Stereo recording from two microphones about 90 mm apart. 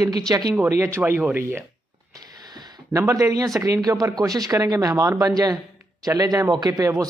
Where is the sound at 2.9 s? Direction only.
35° right (ahead or behind).